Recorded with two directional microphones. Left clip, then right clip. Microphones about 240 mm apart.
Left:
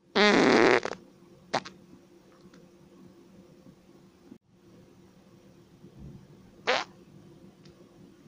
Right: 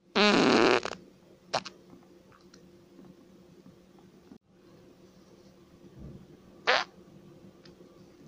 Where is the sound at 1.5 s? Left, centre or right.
Centre.